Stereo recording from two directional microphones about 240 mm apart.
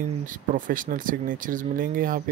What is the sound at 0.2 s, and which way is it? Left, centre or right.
Speech, right.